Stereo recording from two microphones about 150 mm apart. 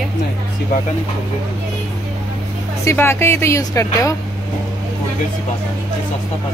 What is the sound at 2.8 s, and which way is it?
Speech, 15° left (ahead or behind).